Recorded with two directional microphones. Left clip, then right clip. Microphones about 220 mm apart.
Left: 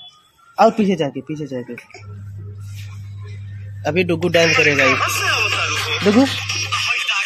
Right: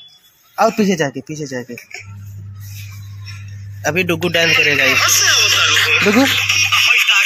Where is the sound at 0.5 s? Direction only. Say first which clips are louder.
Even; 15° right (ahead or behind).